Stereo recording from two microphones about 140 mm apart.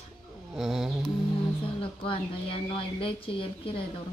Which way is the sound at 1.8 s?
40° left (ahead or behind).